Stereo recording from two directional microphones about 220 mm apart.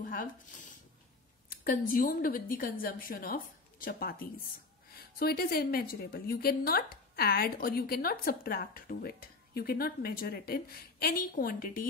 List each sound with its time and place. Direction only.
0.0 s a woman's voice: 40° left (ahead or behind)